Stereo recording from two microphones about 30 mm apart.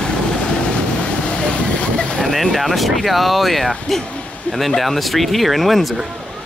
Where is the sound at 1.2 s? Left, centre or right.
Left.